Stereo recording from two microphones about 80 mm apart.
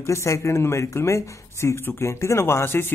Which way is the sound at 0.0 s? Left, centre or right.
Left.